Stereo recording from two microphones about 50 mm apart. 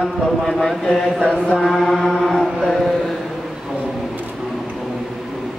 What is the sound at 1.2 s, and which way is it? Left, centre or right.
Chant, left.